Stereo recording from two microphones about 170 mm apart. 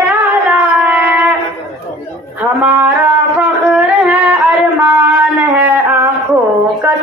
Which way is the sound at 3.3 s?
10° right (ahead or behind).